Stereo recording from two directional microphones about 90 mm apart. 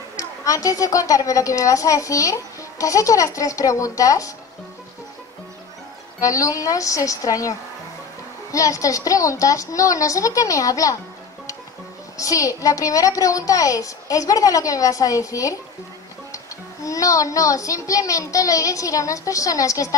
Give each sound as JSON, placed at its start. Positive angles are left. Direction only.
{"t": 0.1, "sound": "a woman's voice", "side_deg": 40}
{"t": 6.1, "sound": "a woman's voice", "side_deg": 40}
{"t": 12.2, "sound": "a woman's voice", "side_deg": 40}
{"t": 16.8, "sound": "a woman's voice", "side_deg": 40}